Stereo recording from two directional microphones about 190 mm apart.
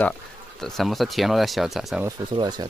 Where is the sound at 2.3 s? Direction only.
20° right (ahead or behind).